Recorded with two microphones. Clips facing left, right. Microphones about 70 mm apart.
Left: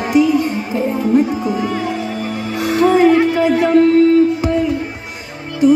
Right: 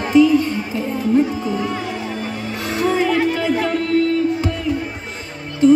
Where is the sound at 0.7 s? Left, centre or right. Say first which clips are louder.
Left 3 dB; centre.